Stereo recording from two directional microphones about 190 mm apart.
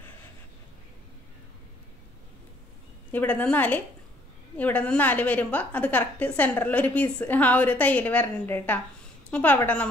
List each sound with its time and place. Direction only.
3.1 s a woman's voice: 10° left (ahead or behind)